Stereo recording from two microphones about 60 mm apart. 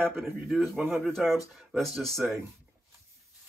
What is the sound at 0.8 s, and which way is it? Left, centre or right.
Speech, right.